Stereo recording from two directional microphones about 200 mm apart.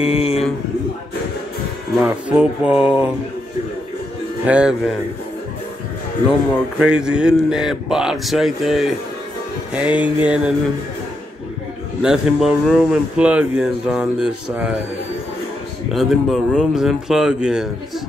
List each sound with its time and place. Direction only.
0.0 s a man's voice: 30° left (ahead or behind)
2.0 s speech: 5° right (ahead or behind)
4.5 s speech: 5° right (ahead or behind)
6.8 s speech: 5° right (ahead or behind)
9.8 s music: 5° right (ahead or behind)
10.2 s speech: 5° right (ahead or behind)
12.0 s speech: 5° right (ahead or behind)
15.9 s speech: centre (ahead or behind)